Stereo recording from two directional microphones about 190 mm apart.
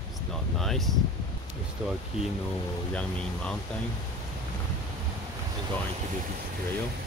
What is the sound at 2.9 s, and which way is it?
Speech, 5° left (ahead or behind).